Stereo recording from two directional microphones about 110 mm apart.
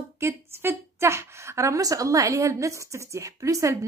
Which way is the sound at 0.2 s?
20° right (ahead or behind).